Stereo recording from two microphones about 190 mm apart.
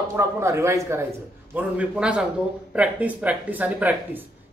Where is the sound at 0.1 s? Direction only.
15° right (ahead or behind).